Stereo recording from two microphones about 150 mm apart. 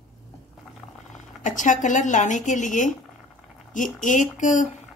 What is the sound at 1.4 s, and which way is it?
Speech, 55° left (ahead or behind).